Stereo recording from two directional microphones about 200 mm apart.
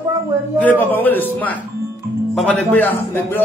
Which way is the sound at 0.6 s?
10° left (ahead or behind).